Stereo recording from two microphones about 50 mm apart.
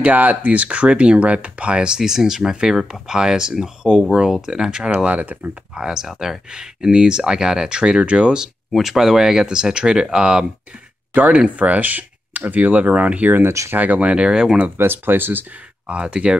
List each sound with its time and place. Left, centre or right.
0.0 s speech: right
5.8 s speech: centre
8.7 s speech: centre
14.8 s speech: right
15.9 s speech: right